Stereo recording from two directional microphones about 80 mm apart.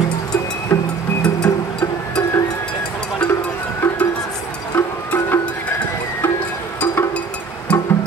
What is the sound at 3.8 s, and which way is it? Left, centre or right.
Music, left.